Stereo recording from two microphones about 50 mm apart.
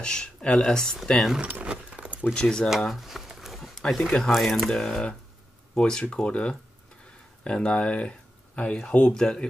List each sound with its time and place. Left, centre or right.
0.0 s speech: centre
1.4 s a sound: right
2.3 s speech: centre
2.9 s a sound: centre
4.3 s speech: centre
4.6 s speech: centre